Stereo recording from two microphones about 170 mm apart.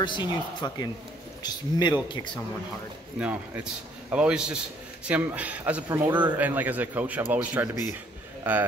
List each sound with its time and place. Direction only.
0.0 s speech: 25° left (ahead or behind)
3.2 s a man's voice: 10° right (ahead or behind)